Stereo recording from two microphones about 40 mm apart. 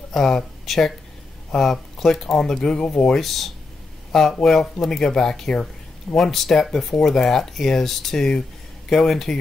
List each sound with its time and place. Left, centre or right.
0.1 s speech: centre
3.2 s speech: centre